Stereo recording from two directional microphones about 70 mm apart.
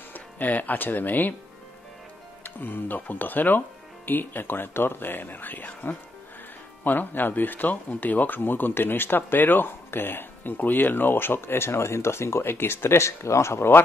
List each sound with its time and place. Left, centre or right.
0.1 s speech: left
2.4 s speech: left